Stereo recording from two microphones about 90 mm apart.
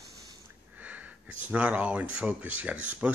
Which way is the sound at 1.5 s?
15° right (ahead or behind).